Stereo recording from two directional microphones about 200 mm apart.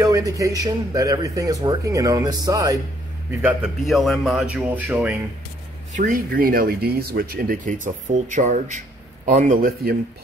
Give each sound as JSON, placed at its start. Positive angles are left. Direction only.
{"t": 0.0, "sound": "speech", "side_deg": -15}
{"t": 3.3, "sound": "speech", "side_deg": -5}
{"t": 5.9, "sound": "speech", "side_deg": -45}